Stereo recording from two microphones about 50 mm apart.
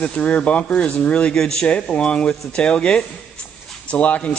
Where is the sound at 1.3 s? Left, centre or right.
Centre.